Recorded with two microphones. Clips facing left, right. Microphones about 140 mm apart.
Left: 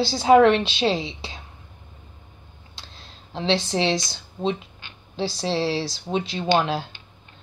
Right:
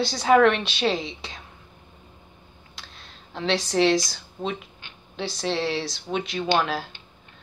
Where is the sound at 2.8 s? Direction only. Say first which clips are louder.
Left 1 dB; 30° left (ahead or behind).